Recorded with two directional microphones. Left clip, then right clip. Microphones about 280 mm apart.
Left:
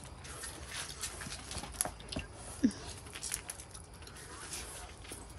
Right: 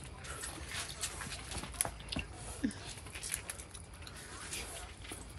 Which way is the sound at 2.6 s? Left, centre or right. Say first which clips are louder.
Left 6 dB; left.